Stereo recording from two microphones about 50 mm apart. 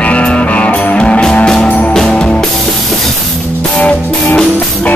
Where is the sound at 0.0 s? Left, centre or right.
Left.